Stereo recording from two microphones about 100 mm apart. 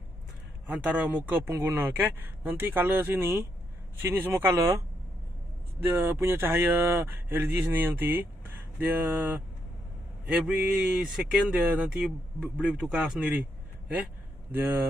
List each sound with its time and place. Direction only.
0.7 s speech: 15° right (ahead or behind)